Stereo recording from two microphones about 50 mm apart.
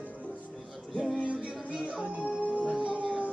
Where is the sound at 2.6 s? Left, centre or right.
Centre.